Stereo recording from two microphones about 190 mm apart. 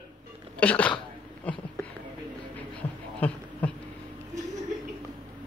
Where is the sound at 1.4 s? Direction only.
5° left (ahead or behind).